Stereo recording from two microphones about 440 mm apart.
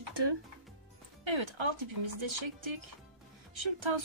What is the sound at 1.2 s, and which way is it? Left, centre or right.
Speech, right.